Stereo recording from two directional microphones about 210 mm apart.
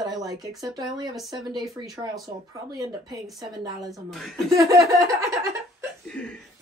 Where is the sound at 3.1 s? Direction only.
Centre (ahead or behind).